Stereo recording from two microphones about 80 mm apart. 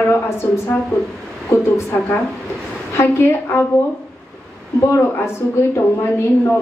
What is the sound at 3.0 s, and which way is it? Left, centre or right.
Speech, left.